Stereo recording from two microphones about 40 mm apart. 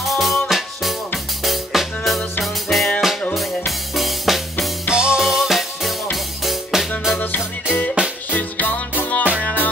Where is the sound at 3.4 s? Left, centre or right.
Centre.